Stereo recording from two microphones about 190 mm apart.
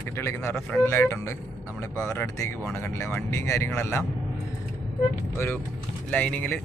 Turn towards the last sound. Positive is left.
turn(degrees=10)  # may be behind; listen again after turning